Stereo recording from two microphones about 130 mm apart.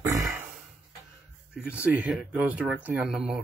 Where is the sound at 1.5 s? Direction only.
10° right (ahead or behind).